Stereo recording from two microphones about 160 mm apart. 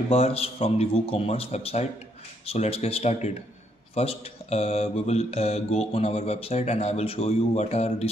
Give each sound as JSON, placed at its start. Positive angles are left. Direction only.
{"t": 0.1, "sound": "mantra", "side_deg": 40}